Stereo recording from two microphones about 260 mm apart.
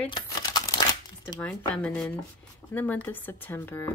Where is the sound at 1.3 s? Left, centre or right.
Centre.